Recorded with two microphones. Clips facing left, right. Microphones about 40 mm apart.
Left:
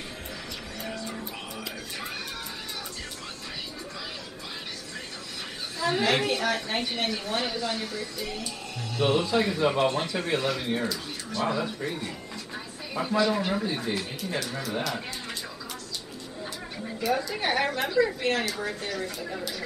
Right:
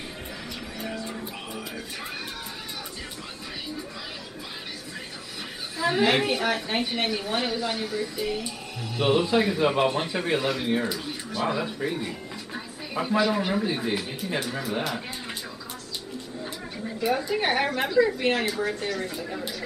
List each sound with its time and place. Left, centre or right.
0.7 s music: centre
5.8 s a woman's voice: centre
17.0 s a woman's voice: right
17.8 s speech: centre
18.2 s a woman's voice: right
18.5 s speech: centre